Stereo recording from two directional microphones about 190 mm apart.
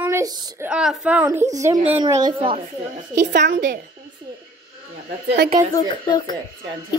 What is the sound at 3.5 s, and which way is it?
Speech, 70° right (ahead or behind).